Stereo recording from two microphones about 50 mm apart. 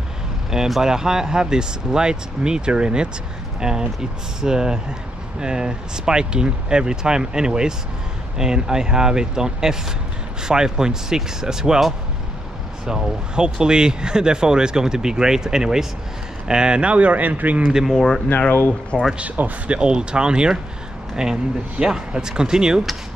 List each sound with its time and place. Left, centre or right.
0.5 s speech: centre; by 17.7 s right
17.9 s speech: centre
19.1 s speech: right
19.8 s speech: centre